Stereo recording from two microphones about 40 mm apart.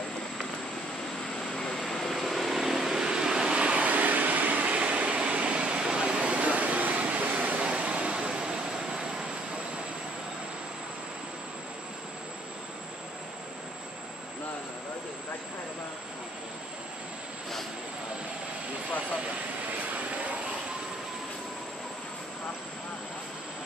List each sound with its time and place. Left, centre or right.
1.4 s vehicle: centre
20.0 s vehicle: right